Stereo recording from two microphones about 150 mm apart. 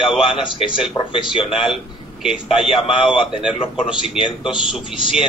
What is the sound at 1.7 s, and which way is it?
Speech, 5° right (ahead or behind).